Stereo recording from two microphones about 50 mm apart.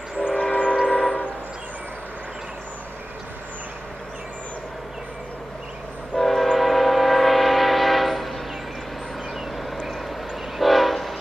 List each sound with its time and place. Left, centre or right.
0.3 s train: left
6.1 s train: centre
10.6 s train: centre